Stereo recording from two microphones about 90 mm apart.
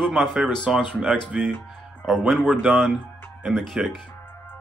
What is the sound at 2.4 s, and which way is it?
A man's voice, 10° right (ahead or behind).